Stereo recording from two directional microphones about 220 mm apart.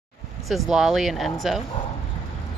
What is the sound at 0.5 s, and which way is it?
Speech, centre (ahead or behind).